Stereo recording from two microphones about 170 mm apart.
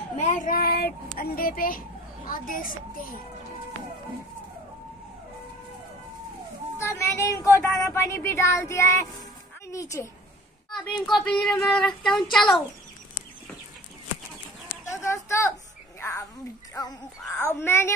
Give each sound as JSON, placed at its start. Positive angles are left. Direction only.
{"t": 0.1, "sound": "a child's voice", "side_deg": 45}
{"t": 6.8, "sound": "a woman's voice", "side_deg": 15}
{"t": 11.1, "sound": "child singing", "side_deg": 0}
{"t": 14.9, "sound": "a sound", "side_deg": 15}
{"t": 16.8, "sound": "speech", "side_deg": 20}